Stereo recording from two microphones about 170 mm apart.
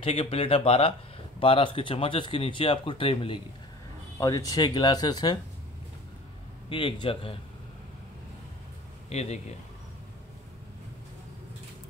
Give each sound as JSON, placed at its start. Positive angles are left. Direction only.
{"t": 0.0, "sound": "speech", "side_deg": 35}
{"t": 4.2, "sound": "speech", "side_deg": 20}
{"t": 6.7, "sound": "speech", "side_deg": 30}
{"t": 9.1, "sound": "speech", "side_deg": 40}